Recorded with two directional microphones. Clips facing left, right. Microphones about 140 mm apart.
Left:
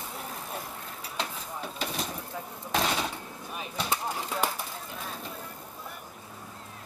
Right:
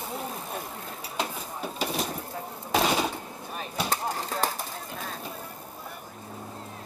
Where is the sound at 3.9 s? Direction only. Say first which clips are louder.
Even; 40° right (ahead or behind).